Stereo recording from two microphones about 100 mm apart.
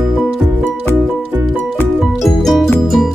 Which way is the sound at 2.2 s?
Centre (ahead or behind).